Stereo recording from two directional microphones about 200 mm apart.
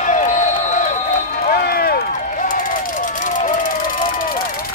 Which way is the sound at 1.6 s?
50° left (ahead or behind).